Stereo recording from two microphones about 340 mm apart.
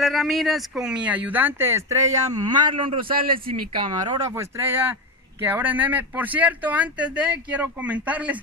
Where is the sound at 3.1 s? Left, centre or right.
Right.